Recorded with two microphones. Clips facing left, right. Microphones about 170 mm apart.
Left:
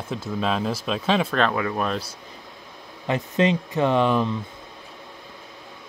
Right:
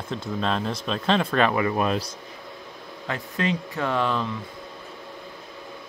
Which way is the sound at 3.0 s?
20° left (ahead or behind).